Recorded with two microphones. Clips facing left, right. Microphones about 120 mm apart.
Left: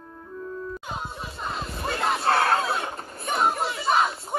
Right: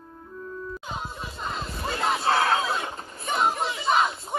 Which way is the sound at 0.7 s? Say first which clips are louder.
Left 1 dB; 5° left (ahead or behind).